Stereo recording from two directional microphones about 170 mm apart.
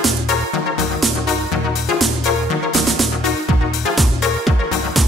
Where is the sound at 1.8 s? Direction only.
Centre (ahead or behind).